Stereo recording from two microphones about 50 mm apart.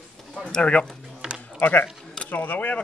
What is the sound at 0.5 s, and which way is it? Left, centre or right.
Speech, left.